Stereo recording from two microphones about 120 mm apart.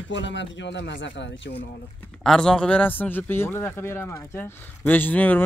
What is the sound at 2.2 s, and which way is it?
A man's voice, 5° left (ahead or behind).